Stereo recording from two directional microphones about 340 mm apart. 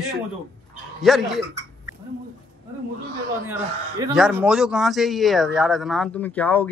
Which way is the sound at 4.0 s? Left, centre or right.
Centre.